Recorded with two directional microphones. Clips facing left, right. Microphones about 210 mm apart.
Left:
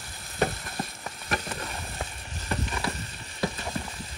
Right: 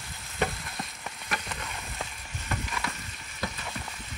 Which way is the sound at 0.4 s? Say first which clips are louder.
Left 3 dB; 35° left (ahead or behind).